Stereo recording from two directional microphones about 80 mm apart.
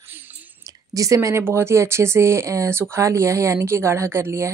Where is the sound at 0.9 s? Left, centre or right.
Right.